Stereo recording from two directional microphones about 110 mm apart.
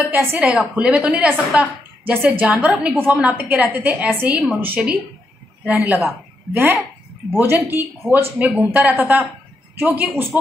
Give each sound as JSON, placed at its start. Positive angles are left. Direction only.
{"t": 0.0, "sound": "a woman's voice", "side_deg": -15}